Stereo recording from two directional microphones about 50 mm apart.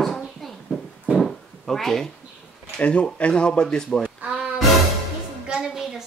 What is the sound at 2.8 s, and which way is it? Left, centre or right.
Speech, left.